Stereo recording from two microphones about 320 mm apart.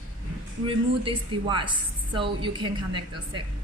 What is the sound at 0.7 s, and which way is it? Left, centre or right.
A woman's voice, centre.